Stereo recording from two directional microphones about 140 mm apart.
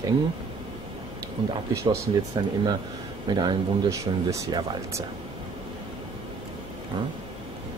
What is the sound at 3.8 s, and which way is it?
Speech, 20° right (ahead or behind).